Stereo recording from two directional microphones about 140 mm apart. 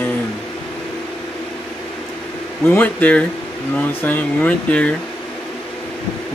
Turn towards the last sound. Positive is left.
turn(degrees=10)  # may be behind; listen again after turning